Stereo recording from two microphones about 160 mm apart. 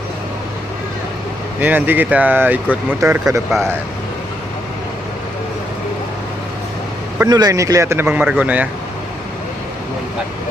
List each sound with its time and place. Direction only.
1.6 s speech: 10° right (ahead or behind)
7.2 s speech: 25° right (ahead or behind); by 8.6 s 10° right (ahead or behind)